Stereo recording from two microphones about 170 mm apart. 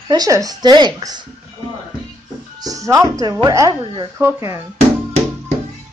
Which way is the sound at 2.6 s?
20° right (ahead or behind).